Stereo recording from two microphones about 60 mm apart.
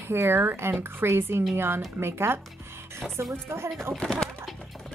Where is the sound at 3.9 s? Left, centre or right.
Centre.